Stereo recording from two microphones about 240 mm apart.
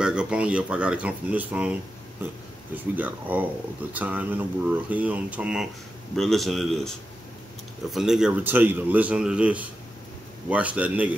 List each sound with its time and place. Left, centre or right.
0.0 s a man's voice: centre